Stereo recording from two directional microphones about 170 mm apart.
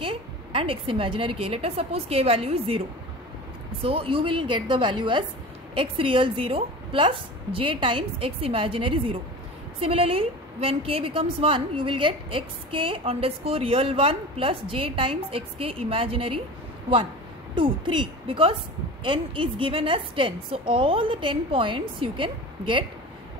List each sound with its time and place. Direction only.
0.0 s a woman's voice: 30° right (ahead or behind)
17.6 s a woman's voice: 30° right (ahead or behind)